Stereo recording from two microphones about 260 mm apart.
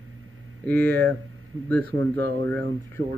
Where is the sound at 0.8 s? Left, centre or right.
Centre.